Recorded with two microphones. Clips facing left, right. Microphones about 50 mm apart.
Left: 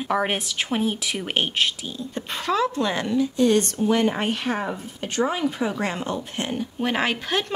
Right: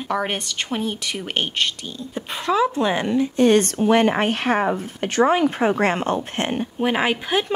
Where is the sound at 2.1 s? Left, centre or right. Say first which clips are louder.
Right 3 dB; centre.